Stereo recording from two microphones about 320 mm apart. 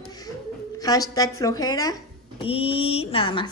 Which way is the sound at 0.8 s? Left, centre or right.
Centre.